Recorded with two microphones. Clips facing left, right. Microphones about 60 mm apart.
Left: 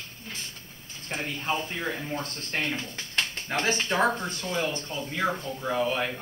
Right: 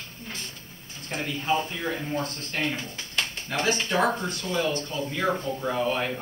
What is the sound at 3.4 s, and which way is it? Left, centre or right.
Speech, left.